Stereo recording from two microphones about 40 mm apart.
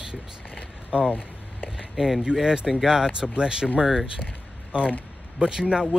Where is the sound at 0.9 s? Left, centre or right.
Right.